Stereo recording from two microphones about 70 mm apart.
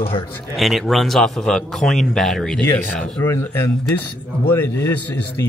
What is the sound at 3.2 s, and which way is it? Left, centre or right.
Speech, left.